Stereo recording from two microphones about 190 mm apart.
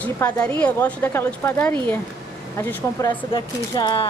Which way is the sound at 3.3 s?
25° left (ahead or behind).